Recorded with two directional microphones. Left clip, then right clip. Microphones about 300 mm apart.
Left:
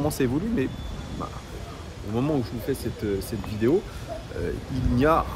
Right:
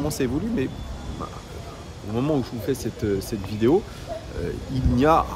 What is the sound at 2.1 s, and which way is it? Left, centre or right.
Speech, centre.